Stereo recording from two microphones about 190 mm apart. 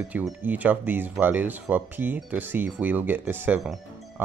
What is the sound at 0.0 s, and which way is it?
Speech, 5° right (ahead or behind).